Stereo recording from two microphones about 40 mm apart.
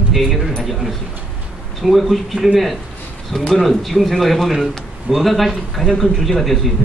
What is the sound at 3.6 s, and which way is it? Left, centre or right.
Speech, centre.